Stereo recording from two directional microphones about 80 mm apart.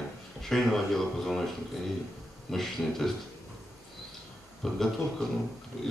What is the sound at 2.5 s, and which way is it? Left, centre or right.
Speech, centre.